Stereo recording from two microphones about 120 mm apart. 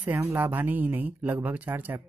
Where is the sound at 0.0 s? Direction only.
15° right (ahead or behind).